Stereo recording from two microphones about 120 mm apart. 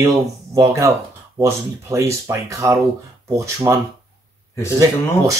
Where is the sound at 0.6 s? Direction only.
25° right (ahead or behind).